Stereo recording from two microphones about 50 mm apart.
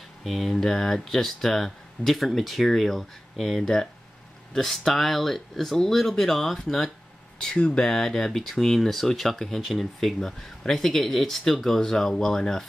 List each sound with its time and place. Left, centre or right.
0.2 s speech: centre
7.3 s speech: centre